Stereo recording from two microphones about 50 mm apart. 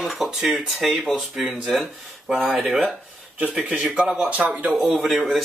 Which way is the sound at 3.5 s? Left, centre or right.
Right.